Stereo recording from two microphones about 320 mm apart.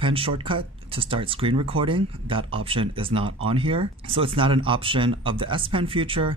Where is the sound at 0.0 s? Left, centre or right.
Centre.